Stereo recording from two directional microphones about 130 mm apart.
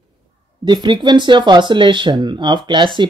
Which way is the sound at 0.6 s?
35° right (ahead or behind).